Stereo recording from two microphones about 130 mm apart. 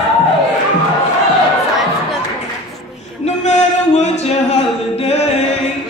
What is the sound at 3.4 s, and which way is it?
Singing, 60° left (ahead or behind).